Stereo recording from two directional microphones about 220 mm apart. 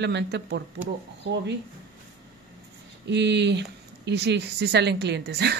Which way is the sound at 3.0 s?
50° right (ahead or behind).